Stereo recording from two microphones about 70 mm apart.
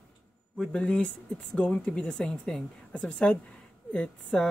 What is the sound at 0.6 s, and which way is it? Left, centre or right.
Speech, centre.